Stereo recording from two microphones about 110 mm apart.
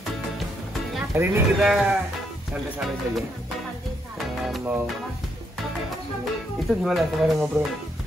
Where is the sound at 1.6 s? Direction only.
5° right (ahead or behind).